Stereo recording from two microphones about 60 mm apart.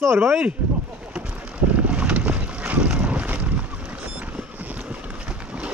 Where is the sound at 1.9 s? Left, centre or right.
Right.